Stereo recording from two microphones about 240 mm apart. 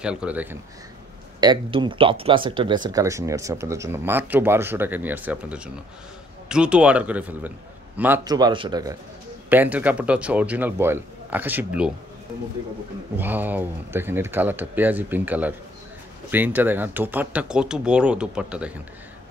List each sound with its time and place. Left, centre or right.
0.0 s speech: centre
1.4 s speech: centre
13.2 s speech: centre